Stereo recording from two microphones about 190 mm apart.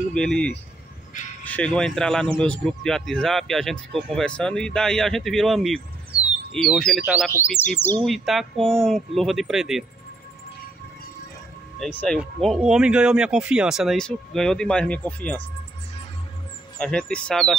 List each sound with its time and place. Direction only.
0.1 s speech: 5° left (ahead or behind)
8.0 s speech: centre (ahead or behind)
11.8 s speech: 5° left (ahead or behind)
16.7 s speech: 5° left (ahead or behind)